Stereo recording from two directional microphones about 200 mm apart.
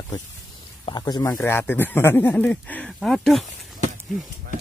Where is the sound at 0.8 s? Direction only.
20° left (ahead or behind); by 3.4 s centre (ahead or behind).